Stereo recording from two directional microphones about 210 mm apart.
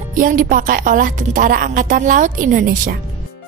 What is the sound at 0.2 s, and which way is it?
A woman's voice, 40° right (ahead or behind).